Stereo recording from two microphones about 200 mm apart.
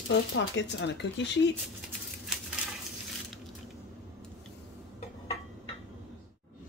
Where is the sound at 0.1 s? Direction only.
65° left (ahead or behind).